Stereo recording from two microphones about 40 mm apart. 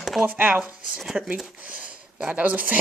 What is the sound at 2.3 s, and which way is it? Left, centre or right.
Speech, right.